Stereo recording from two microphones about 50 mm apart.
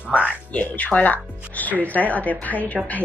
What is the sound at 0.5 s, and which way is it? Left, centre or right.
Speech, left.